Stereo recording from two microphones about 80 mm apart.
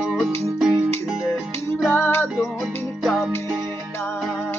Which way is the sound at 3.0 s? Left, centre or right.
Centre.